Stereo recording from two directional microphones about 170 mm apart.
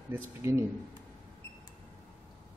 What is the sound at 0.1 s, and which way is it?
Speech, 15° right (ahead or behind).